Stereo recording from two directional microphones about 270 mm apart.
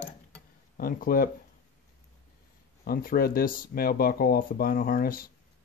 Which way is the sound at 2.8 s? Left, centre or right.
Left.